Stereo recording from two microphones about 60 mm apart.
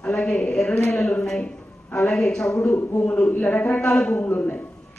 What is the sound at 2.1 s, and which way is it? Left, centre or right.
Speech, centre.